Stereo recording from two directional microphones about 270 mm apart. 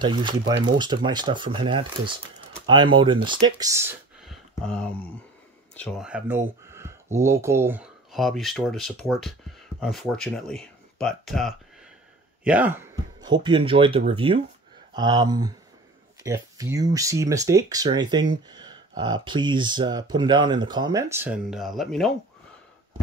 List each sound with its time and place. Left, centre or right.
0.0 s speech: centre